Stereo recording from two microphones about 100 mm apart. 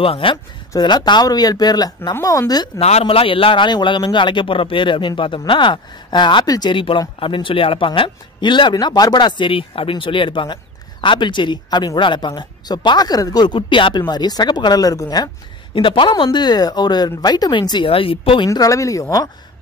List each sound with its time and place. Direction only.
0.0 s speech: 65° left (ahead or behind)
0.7 s speech: 45° left (ahead or behind)
2.8 s a man's voice: 90° left; by 6.7 s 45° left (ahead or behind)
6.7 s a man's voice: 60° left (ahead or behind); by 15.2 s 40° left (ahead or behind)
15.7 s speech: 60° left (ahead or behind)
18.5 s speech: 35° left (ahead or behind)